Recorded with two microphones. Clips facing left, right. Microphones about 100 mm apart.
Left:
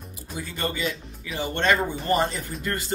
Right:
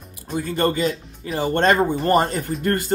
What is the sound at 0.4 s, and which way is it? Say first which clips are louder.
Speech: right 8 dB; 50° right (ahead or behind).